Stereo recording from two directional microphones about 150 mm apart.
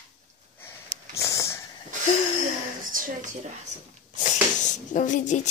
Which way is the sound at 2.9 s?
65° right (ahead or behind).